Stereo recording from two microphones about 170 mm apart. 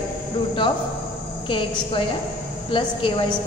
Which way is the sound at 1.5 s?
30° left (ahead or behind).